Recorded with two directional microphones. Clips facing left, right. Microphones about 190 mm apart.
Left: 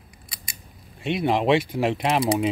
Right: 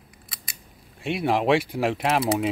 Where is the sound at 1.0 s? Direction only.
5° right (ahead or behind).